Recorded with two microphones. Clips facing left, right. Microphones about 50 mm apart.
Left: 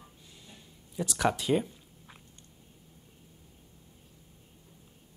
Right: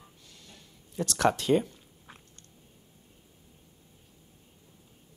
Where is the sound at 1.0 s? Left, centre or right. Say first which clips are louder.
Right 3 dB; centre.